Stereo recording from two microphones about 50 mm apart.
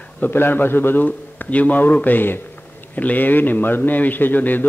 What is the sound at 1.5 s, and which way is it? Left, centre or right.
A man's voice, left.